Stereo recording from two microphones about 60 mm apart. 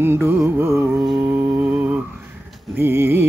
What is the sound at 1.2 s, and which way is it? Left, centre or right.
Humming, right.